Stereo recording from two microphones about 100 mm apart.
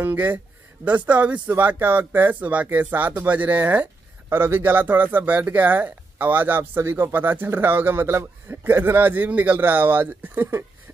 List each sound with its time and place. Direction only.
0.0 s speech: 20° right (ahead or behind)